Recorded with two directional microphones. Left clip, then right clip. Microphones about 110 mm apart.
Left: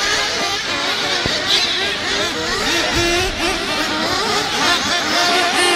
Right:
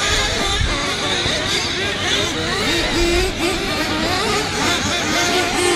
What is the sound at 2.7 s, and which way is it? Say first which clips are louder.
Vehicle: left 2 dB; 35° left (ahead or behind).